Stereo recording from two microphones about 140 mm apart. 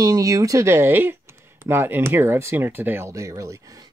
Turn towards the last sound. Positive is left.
turn(degrees=-25)  # may be behind; listen again after turning